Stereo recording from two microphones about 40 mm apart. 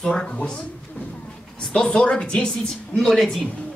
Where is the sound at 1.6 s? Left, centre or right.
Centre.